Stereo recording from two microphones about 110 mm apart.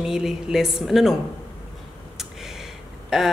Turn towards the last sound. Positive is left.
turn(degrees=-5)  # may be behind; listen again after turning